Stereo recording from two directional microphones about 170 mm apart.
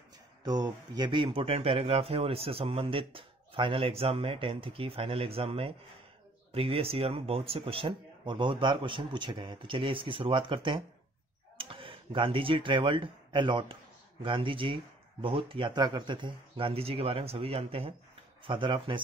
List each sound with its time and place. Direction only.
0.4 s speech: 25° right (ahead or behind)